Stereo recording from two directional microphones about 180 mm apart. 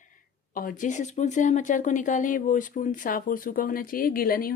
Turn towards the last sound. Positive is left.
turn(degrees=55)  # may be behind; listen again after turning